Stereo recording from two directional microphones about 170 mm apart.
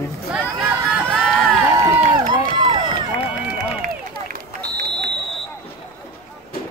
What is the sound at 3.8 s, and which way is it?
Run, 55° right (ahead or behind).